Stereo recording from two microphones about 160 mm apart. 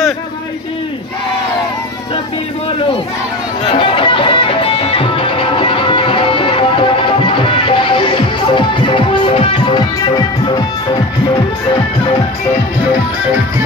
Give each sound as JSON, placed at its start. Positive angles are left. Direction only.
{"t": 3.7, "sound": "music", "side_deg": 30}